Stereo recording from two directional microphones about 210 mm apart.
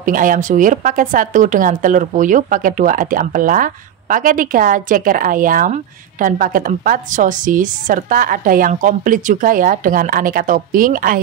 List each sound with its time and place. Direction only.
0.0 s a woman's voice: 40° right (ahead or behind)